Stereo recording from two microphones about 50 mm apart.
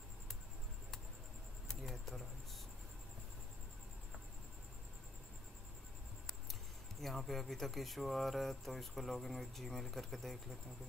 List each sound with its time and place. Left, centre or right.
1.7 s insect: centre
7.0 s speech: centre